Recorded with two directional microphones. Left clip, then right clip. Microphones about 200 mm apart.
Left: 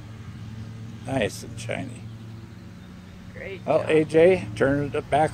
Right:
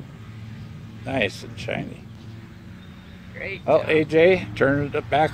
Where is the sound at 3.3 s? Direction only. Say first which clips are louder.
Right 5 dB; 20° left (ahead or behind).